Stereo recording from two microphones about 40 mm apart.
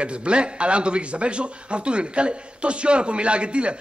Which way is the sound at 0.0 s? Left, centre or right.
Right.